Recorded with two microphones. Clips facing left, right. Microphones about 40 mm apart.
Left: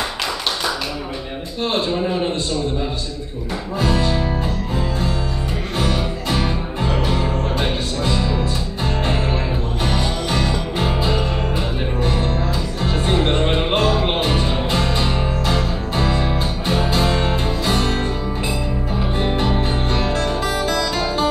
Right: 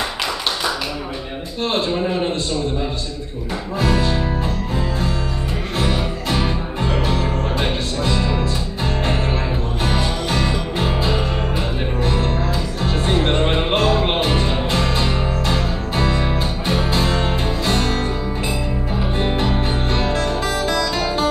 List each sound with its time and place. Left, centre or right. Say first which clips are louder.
1.6 s a sound: even; centre
3.8 s music: even; centre
6.3 s music: even; centre
9.8 s music: right 1 dB; centre
19.1 s music: even; centre